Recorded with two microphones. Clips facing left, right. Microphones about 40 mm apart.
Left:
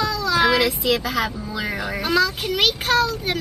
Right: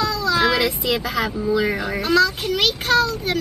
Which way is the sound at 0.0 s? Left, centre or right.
Centre.